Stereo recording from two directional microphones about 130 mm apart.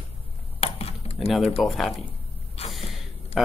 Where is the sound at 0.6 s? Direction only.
50° left (ahead or behind).